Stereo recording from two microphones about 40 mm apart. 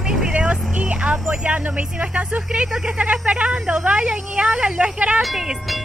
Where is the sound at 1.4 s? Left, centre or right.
Right.